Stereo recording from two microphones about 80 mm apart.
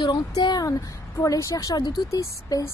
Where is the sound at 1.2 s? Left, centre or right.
Left.